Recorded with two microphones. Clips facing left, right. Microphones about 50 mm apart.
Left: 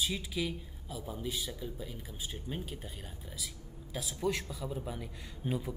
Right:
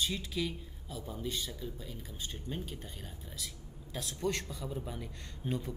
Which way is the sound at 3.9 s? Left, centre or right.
Centre.